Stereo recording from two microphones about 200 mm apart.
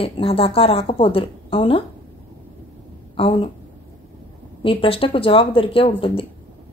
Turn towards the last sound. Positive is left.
turn(degrees=25)  # may be behind; listen again after turning